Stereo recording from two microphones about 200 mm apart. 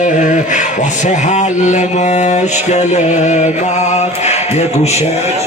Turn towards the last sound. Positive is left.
turn(degrees=35)  # may be behind; listen again after turning